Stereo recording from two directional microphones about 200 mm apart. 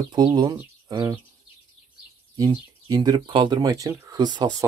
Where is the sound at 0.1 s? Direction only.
20° right (ahead or behind).